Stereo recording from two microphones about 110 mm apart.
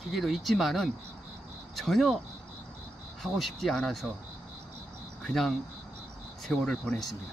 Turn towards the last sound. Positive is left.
turn(degrees=5)  # may be behind; listen again after turning